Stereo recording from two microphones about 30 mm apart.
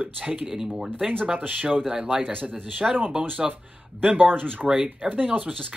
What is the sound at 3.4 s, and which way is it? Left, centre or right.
Speech, centre.